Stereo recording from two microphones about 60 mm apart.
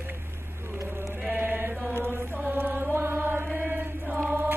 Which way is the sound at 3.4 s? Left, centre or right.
Right.